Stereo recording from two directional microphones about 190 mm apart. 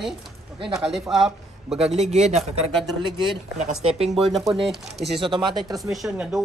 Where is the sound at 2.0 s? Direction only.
35° right (ahead or behind).